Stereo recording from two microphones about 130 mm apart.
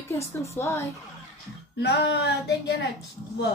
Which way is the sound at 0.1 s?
20° left (ahead or behind).